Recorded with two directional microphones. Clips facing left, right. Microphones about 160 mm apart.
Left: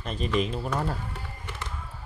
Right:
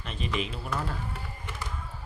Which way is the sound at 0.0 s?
40° left (ahead or behind).